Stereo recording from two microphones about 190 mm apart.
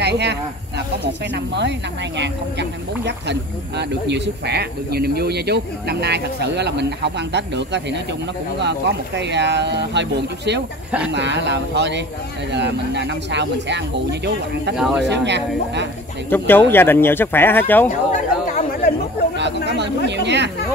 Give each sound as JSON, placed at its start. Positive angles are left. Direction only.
{"t": 0.0, "sound": "speech", "side_deg": -65}
{"t": 16.3, "sound": "speech", "side_deg": 10}
{"t": 17.8, "sound": "speech", "side_deg": 40}
{"t": 19.3, "sound": "speech", "side_deg": -65}